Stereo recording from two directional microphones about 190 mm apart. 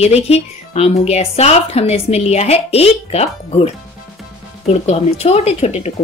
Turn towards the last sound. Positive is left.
turn(degrees=35)  # may be behind; listen again after turning